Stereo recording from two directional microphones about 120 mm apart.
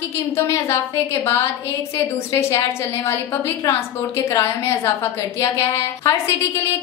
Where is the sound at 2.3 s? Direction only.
25° left (ahead or behind).